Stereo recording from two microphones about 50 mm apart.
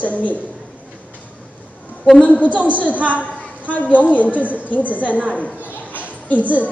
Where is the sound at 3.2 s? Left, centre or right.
Left.